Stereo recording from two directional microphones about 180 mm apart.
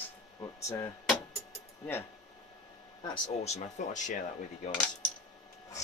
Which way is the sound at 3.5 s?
40° left (ahead or behind).